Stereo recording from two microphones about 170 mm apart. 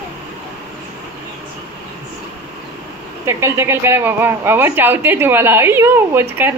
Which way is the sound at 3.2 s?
15° right (ahead or behind).